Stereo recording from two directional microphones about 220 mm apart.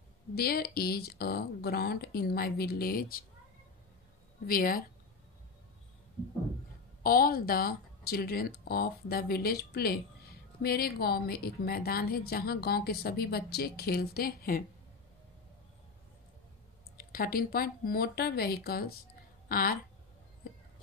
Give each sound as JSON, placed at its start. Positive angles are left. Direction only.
{"t": 0.3, "sound": "a woman's voice", "side_deg": 45}
{"t": 4.5, "sound": "speech", "side_deg": 40}
{"t": 7.0, "sound": "a woman's voice", "side_deg": 40}
{"t": 16.9, "sound": "a woman's voice", "side_deg": 40}